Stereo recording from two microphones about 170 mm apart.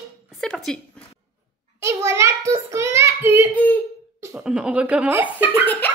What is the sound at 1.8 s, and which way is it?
A child's voice, 15° right (ahead or behind).